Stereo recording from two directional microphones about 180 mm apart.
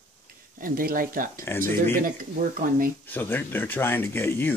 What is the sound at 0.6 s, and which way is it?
Speech, 50° right (ahead or behind).